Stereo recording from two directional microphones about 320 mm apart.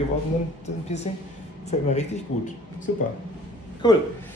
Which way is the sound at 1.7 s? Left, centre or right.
Left.